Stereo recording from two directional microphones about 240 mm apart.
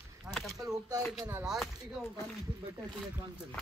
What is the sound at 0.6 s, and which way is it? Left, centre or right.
Speech, centre.